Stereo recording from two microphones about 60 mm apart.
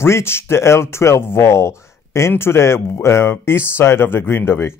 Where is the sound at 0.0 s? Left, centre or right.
Left.